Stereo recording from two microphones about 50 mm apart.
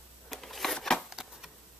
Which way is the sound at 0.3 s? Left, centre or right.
Centre.